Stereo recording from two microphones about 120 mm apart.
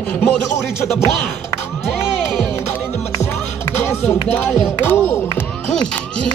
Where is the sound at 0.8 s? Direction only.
20° left (ahead or behind).